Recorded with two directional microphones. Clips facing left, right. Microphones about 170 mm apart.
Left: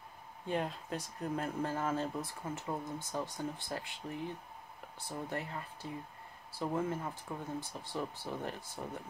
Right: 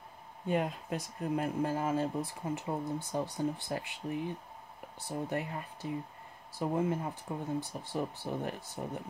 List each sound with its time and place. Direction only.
0.5 s speech: 15° right (ahead or behind)
5.3 s speech: 15° right (ahead or behind)